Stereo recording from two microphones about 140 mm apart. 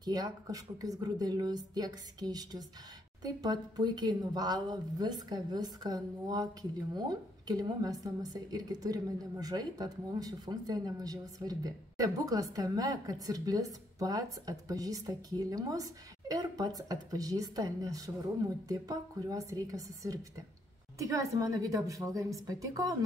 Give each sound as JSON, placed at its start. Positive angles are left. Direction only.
{"t": 0.0, "sound": "a woman's voice", "side_deg": -25}